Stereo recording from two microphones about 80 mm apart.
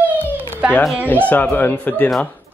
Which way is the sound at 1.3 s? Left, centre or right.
Left.